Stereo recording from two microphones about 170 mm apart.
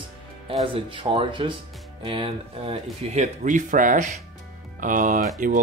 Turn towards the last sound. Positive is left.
turn(degrees=-50)  # may be behind; listen again after turning